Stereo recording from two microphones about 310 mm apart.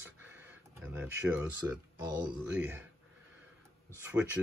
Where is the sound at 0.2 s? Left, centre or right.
Centre.